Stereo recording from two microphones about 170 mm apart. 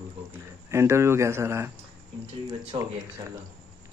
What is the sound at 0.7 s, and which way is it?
Speech, 15° right (ahead or behind).